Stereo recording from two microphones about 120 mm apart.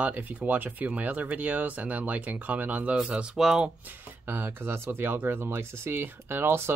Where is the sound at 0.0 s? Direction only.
15° right (ahead or behind).